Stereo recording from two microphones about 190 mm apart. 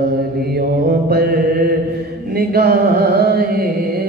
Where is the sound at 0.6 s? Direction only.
55° right (ahead or behind).